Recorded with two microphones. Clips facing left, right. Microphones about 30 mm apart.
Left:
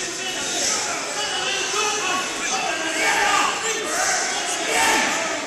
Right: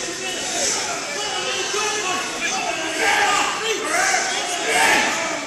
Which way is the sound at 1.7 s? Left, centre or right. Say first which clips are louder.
Even; centre.